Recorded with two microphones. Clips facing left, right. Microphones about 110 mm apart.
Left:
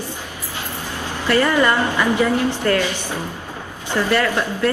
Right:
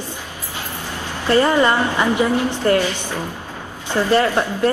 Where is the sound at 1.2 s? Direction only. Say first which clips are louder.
Right 2 dB; 20° right (ahead or behind).